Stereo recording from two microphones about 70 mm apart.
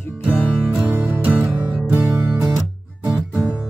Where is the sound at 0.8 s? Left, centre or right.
Right.